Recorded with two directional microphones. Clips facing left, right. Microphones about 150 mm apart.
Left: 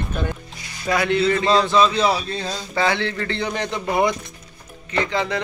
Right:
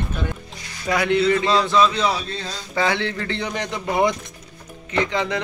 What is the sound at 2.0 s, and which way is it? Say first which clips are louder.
Speech: left 3 dB; 10° left (ahead or behind).